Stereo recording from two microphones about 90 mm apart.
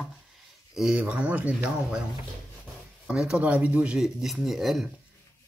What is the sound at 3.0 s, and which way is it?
Speech, 10° right (ahead or behind).